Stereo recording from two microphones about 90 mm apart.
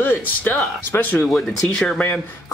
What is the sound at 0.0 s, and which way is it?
Speech, 20° left (ahead or behind).